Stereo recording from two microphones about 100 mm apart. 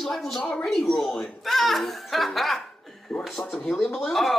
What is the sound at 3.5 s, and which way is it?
Speech, 20° left (ahead or behind).